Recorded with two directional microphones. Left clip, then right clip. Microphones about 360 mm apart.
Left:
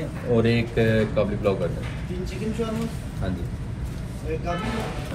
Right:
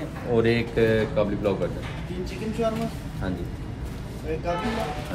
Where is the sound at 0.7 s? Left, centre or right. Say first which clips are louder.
Right 1 dB; left.